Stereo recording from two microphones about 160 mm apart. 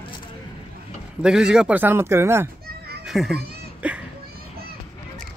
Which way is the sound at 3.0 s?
Centre (ahead or behind).